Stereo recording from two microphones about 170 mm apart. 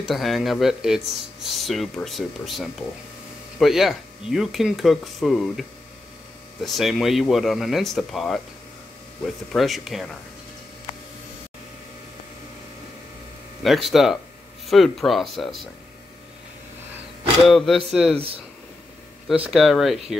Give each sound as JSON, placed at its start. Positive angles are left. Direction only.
{"t": 0.0, "sound": "speech", "side_deg": 0}
{"t": 13.6, "sound": "speech", "side_deg": 0}
{"t": 17.5, "sound": "speech", "side_deg": 0}
{"t": 18.1, "sound": "speech", "side_deg": -35}
{"t": 19.2, "sound": "speech", "side_deg": -5}